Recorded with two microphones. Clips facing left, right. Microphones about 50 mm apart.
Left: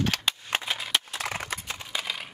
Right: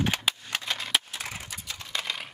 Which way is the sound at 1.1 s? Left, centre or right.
Left.